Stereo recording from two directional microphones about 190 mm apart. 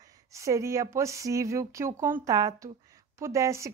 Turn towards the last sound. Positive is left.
turn(degrees=-15)  # may be behind; listen again after turning